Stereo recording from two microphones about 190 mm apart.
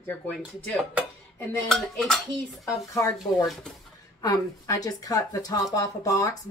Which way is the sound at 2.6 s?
15° left (ahead or behind).